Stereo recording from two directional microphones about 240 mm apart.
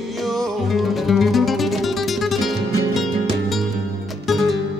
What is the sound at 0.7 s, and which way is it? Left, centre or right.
Music, centre.